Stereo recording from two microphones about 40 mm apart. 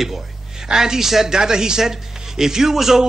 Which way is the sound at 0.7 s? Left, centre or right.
Centre.